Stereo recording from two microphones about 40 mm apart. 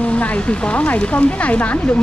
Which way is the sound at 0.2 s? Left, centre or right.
Left.